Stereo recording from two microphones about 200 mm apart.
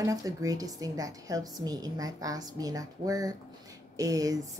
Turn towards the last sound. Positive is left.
turn(degrees=-15)  # may be behind; listen again after turning